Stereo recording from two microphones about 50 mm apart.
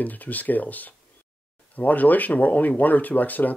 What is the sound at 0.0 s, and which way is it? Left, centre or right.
Speech, left.